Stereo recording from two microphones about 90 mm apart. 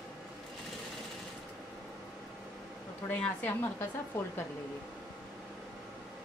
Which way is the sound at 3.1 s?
20° left (ahead or behind).